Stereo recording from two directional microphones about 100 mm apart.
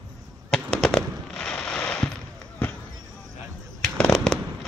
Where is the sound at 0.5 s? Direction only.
5° left (ahead or behind).